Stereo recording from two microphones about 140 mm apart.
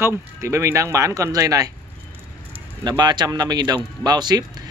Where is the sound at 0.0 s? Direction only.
20° right (ahead or behind).